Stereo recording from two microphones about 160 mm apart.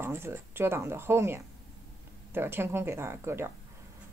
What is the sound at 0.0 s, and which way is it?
A woman's voice, 15° right (ahead or behind).